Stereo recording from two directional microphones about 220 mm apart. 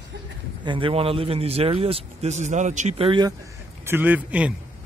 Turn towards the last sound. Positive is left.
turn(degrees=-5)  # may be behind; listen again after turning